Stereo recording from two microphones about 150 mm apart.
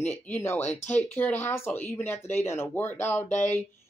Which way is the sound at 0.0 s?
15° left (ahead or behind).